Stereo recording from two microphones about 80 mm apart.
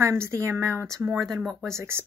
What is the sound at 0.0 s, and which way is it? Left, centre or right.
Speech, right.